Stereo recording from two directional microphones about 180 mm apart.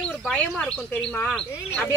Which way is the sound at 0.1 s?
Centre (ahead or behind).